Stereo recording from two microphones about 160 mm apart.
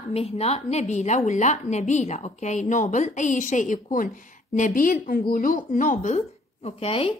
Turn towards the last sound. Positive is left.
turn(degrees=35)  # may be behind; listen again after turning